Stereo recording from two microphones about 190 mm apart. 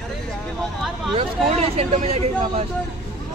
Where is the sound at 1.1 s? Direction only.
30° right (ahead or behind).